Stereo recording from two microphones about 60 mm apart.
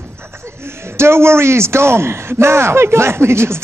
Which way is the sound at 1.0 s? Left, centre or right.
Right.